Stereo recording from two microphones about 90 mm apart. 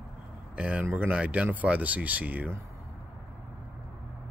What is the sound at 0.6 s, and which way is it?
Speech, 15° right (ahead or behind).